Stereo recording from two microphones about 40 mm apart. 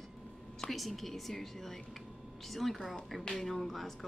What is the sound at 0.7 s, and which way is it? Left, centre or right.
Speech, centre.